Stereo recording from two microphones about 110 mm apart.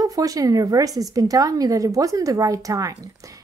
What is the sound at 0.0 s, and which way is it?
Speech, 30° right (ahead or behind).